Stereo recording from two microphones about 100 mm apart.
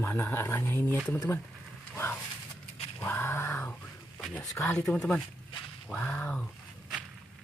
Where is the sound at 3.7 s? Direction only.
10° left (ahead or behind).